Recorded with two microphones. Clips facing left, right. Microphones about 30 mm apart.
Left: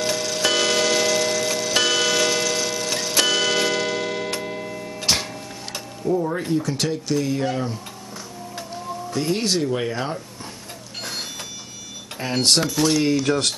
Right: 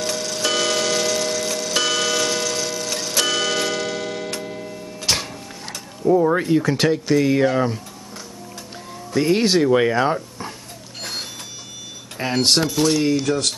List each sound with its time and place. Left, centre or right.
0.0 s clock: centre
5.0 s music: centre
6.0 s speech: right
9.1 s speech: centre
12.2 s speech: centre
13.2 s speech: centre